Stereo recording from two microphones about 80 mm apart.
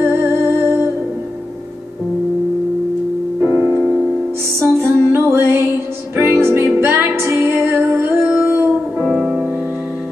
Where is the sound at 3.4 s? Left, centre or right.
Right.